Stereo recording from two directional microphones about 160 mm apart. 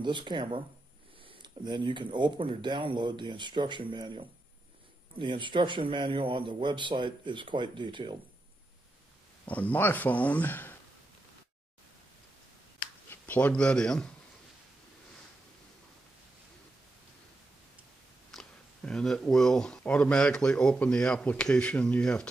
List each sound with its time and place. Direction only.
0.0 s a man's voice: 30° right (ahead or behind)
9.5 s speech: 10° left (ahead or behind)
13.1 s speech: 10° left (ahead or behind)
18.3 s speech: 5° left (ahead or behind)